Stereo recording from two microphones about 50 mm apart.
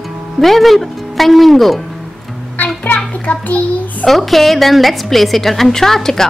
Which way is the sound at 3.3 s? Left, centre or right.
Left.